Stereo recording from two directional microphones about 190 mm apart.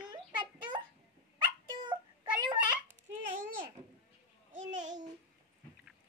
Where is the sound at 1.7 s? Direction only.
25° right (ahead or behind).